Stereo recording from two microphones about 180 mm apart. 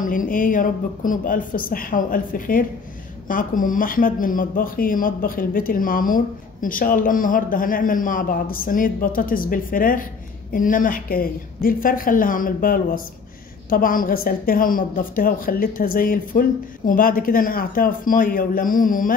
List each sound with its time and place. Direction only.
0.0 s speech: 50° left (ahead or behind)